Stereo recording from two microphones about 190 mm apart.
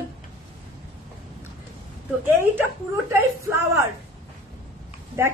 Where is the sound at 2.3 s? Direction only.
10° right (ahead or behind).